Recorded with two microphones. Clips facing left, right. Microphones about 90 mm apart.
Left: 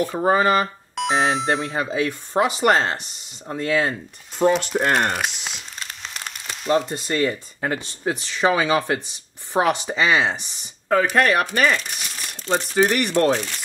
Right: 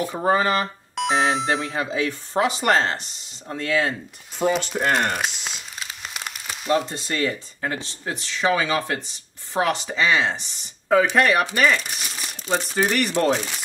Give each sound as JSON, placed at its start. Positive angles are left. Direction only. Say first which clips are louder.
{"t": 0.2, "sound": "speech", "louder": "left 2 dB", "side_deg": 10}
{"t": 4.4, "sound": "crumpling", "louder": "left 3 dB", "side_deg": 0}
{"t": 7.6, "sound": "speech", "louder": "left 4 dB", "side_deg": 15}
{"t": 10.9, "sound": "speech", "louder": "even", "side_deg": 0}